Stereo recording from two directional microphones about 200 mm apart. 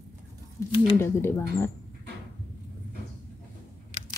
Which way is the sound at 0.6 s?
15° left (ahead or behind).